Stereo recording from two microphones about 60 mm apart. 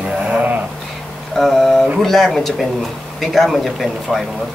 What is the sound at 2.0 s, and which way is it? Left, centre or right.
A man's voice, centre.